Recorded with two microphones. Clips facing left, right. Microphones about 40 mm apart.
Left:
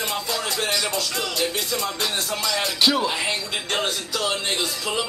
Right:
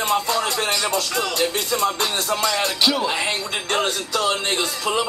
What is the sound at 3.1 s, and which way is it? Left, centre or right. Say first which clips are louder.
Music: right 2 dB; right.